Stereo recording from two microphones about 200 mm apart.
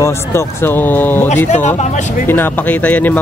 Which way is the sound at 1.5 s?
35° left (ahead or behind).